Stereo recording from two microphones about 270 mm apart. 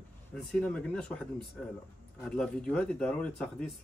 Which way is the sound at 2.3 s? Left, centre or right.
Centre.